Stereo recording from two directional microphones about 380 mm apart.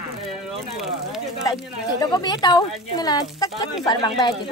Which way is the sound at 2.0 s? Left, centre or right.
Centre.